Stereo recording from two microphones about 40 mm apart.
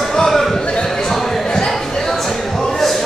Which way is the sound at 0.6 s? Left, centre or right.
Left.